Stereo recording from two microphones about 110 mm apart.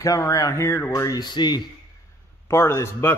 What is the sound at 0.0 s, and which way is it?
Speech, 30° left (ahead or behind).